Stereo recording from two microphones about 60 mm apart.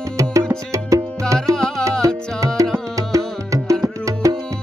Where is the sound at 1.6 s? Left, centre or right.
Centre.